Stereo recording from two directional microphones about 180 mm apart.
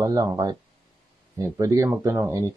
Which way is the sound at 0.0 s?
20° right (ahead or behind).